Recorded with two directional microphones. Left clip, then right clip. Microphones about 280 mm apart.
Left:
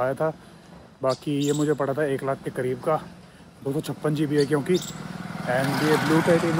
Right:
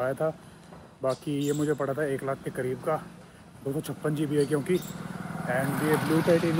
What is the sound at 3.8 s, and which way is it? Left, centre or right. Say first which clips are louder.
Speech: left 5 dB; left.